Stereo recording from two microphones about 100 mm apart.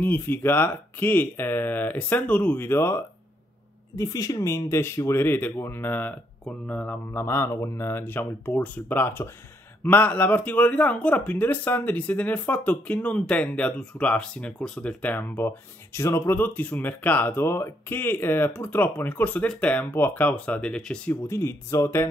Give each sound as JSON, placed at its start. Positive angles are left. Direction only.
{"t": 0.0, "sound": "speech", "side_deg": 20}
{"t": 3.9, "sound": "speech", "side_deg": 35}
{"t": 16.3, "sound": "speech", "side_deg": 15}
{"t": 21.1, "sound": "speech", "side_deg": 30}